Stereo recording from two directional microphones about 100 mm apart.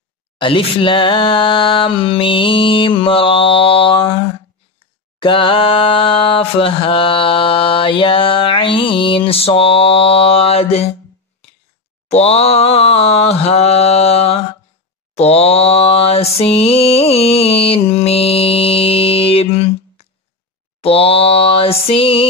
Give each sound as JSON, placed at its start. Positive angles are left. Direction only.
{"t": 0.4, "sound": "mantra", "side_deg": 60}
{"t": 5.2, "sound": "mantra", "side_deg": 60}
{"t": 12.2, "sound": "mantra", "side_deg": 90}